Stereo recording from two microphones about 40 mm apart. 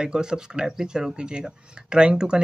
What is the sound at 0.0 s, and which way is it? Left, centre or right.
Speech, centre.